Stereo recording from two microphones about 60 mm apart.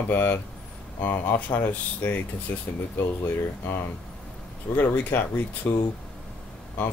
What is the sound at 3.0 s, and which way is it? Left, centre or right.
Speech, left.